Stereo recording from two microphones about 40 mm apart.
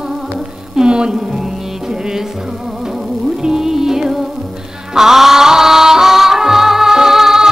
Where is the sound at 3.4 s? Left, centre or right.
Centre.